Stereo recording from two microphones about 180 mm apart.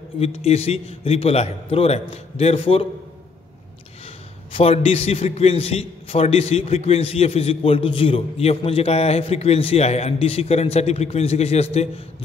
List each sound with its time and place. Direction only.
0.2 s a man's voice: 35° left (ahead or behind)
4.5 s a man's voice: 35° left (ahead or behind)